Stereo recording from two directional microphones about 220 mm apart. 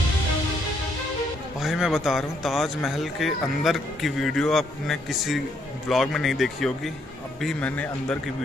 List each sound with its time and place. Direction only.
1.6 s a man's voice: centre (ahead or behind)